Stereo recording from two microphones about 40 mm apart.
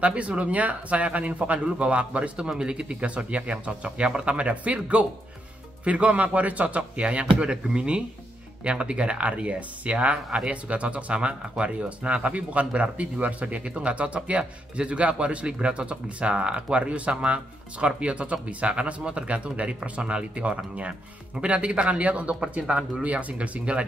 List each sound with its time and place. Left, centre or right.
0.0 s speech: right